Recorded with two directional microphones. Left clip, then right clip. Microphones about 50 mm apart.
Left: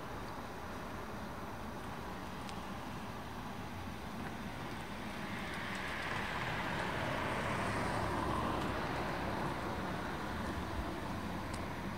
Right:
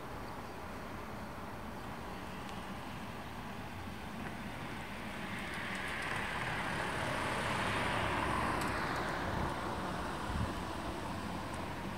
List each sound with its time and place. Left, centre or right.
5.7 s vehicle: centre; by 8.2 s right
8.2 s vehicle: right